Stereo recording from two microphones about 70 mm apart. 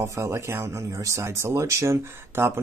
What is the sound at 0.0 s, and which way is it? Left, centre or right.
Speech, right.